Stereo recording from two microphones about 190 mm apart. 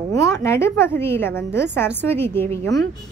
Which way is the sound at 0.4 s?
15° left (ahead or behind).